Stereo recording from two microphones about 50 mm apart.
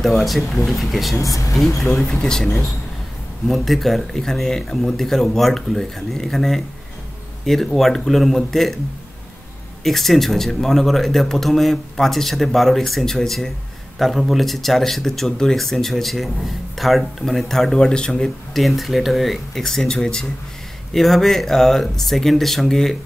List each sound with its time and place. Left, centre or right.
0.0 s a man's voice: centre
2.0 s speech: centre
3.4 s a man's voice: centre
9.8 s a man's voice: centre
18.1 s a man's voice: centre
20.9 s a man's voice: centre